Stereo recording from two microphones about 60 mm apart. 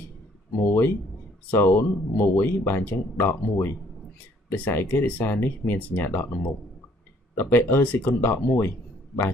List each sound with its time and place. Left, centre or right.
0.6 s speech: left